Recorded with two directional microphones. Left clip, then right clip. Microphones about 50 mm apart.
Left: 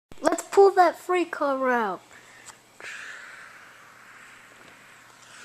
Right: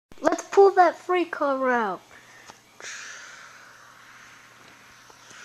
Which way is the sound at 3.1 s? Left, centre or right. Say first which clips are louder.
Even; centre.